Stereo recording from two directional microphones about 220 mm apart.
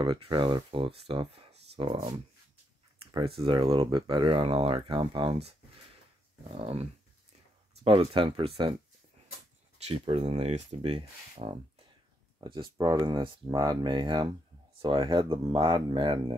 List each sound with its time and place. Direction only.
0.0 s speech: 20° right (ahead or behind)
3.3 s speech: 20° right (ahead or behind)
6.5 s speech: 25° right (ahead or behind)
9.8 s speech: 25° right (ahead or behind)